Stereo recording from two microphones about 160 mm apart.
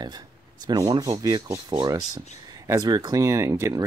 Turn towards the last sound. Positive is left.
turn(degrees=-20)  # may be behind; listen again after turning